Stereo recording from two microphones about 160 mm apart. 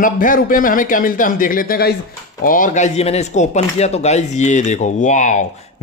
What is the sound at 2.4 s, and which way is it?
Speech, 55° left (ahead or behind).